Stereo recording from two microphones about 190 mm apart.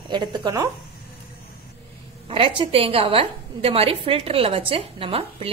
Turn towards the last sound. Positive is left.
turn(degrees=-30)  # may be behind; listen again after turning